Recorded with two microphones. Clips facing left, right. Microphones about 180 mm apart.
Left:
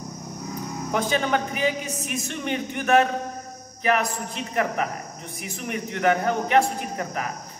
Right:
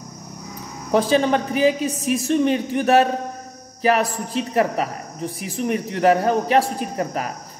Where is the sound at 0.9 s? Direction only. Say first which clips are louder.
Right 6 dB; 35° right (ahead or behind).